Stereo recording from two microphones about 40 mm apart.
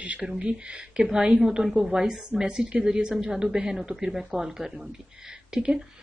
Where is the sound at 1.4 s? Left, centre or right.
Centre.